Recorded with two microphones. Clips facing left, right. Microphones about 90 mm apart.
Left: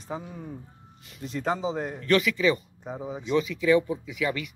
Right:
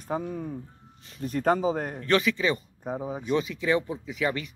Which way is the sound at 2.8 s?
45° right (ahead or behind).